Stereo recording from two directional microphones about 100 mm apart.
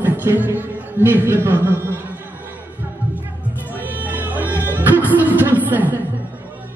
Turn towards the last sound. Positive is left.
turn(degrees=-15)  # may be behind; listen again after turning